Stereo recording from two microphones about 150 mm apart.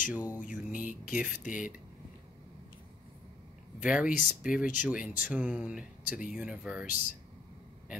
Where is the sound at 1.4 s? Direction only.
60° left (ahead or behind).